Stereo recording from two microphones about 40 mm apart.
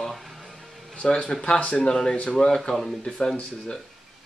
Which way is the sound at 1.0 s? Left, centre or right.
Centre.